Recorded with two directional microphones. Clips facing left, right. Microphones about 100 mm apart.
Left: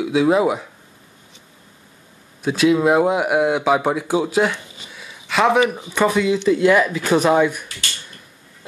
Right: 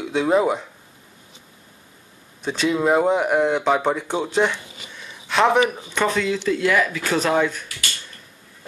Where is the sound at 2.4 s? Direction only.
5° left (ahead or behind).